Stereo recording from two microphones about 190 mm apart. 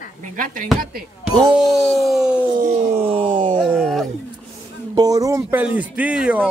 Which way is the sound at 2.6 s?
35° right (ahead or behind).